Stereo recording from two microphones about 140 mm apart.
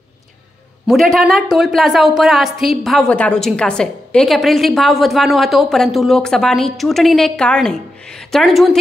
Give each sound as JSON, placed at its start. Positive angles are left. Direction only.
{"t": 0.8, "sound": "a woman's voice", "side_deg": 0}